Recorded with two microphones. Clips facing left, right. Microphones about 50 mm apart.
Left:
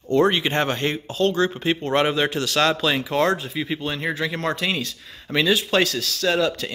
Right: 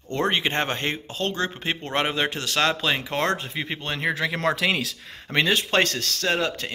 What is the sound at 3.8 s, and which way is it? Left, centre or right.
Speech, right.